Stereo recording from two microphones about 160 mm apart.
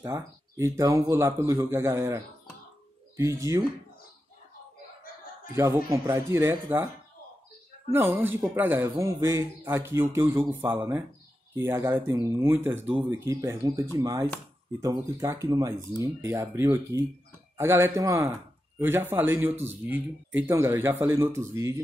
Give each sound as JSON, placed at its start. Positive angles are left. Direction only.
{"t": 0.0, "sound": "speech", "side_deg": -15}
{"t": 5.5, "sound": "speech", "side_deg": -15}
{"t": 7.9, "sound": "speech", "side_deg": -15}